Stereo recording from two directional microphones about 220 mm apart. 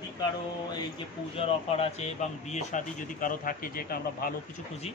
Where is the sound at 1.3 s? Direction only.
25° left (ahead or behind).